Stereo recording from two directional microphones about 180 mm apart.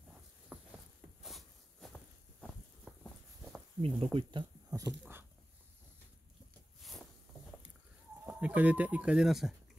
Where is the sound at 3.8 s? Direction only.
30° right (ahead or behind).